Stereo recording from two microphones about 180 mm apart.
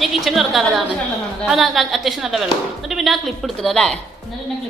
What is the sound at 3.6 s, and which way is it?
Speech, 5° left (ahead or behind).